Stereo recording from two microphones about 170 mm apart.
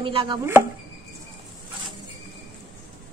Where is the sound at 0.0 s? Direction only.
30° right (ahead or behind).